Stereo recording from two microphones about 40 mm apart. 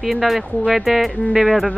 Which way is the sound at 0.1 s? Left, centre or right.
Centre.